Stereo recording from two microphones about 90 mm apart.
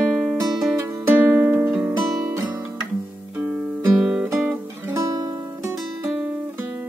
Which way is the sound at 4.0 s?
10° right (ahead or behind).